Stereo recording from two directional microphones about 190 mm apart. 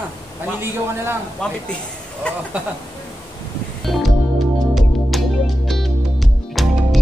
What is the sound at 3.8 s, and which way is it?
Music, centre (ahead or behind).